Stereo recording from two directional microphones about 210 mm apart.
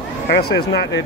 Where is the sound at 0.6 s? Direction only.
60° left (ahead or behind).